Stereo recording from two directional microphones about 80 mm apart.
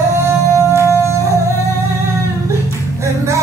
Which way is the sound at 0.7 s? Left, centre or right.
Right.